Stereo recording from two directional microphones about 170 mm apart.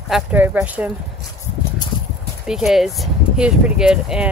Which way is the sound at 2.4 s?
Centre (ahead or behind).